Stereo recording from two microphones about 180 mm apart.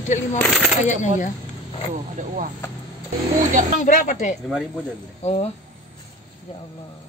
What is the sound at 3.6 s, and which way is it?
Speech, 45° right (ahead or behind).